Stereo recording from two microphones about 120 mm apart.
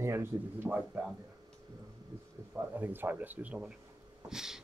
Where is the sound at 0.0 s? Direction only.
20° right (ahead or behind).